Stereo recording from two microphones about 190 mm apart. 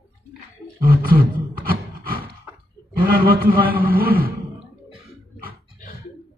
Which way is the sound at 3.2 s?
50° right (ahead or behind).